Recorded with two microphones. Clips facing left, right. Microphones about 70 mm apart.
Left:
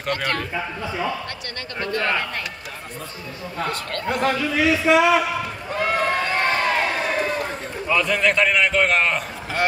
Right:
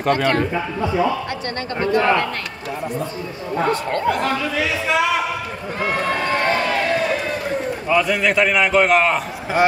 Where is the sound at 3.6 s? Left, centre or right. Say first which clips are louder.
Right 7 dB; right.